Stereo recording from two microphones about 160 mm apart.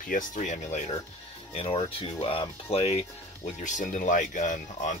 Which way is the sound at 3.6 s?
50° left (ahead or behind).